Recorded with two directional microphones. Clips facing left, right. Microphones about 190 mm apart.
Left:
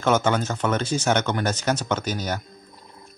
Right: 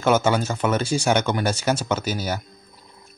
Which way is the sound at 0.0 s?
10° right (ahead or behind).